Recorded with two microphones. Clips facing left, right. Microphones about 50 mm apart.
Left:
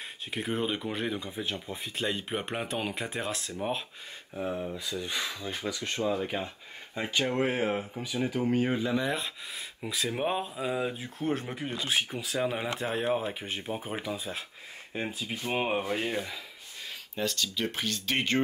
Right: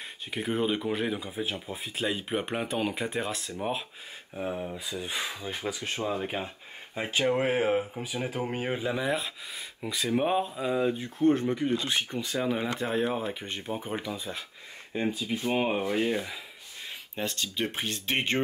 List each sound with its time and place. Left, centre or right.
0.3 s speech: centre
4.7 s speech: centre
17.1 s speech: right